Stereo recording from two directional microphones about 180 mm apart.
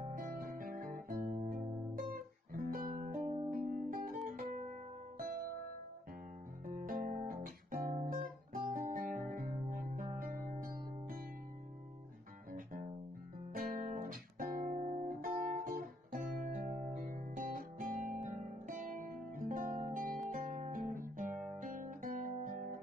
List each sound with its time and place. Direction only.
0.0 s guitar: 50° right (ahead or behind)
3.4 s music: 50° right (ahead or behind)
6.6 s guitar: 45° right (ahead or behind)
10.1 s music: 50° right (ahead or behind)
13.5 s guitar: 50° right (ahead or behind)